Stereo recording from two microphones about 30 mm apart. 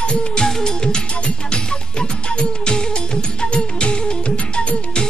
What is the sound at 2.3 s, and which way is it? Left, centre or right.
Music, left.